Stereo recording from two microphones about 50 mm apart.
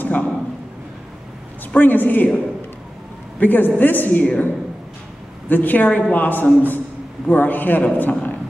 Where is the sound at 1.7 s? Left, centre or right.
Left.